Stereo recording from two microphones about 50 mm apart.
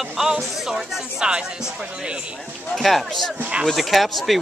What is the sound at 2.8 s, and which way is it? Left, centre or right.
A woman's voice, centre.